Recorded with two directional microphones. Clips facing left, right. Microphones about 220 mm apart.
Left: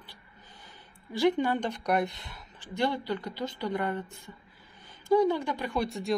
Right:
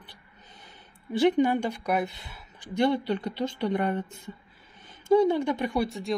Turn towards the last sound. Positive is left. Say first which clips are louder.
# right 3 dB
turn(degrees=-5)  # may be behind; listen again after turning